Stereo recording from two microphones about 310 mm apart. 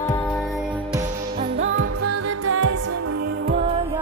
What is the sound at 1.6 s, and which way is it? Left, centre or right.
Music, right.